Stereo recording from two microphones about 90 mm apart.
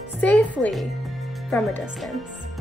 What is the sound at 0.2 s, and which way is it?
Speech, 15° left (ahead or behind).